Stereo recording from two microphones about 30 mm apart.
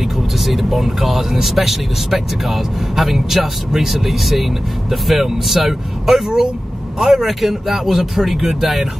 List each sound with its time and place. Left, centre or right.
0.5 s speech: centre